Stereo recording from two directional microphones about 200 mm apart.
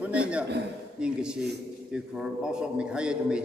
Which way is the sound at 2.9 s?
5° right (ahead or behind).